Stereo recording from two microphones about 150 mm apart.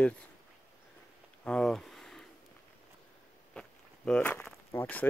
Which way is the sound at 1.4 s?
5° left (ahead or behind).